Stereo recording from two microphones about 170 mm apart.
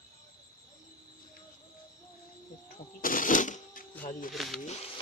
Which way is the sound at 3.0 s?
55° left (ahead or behind).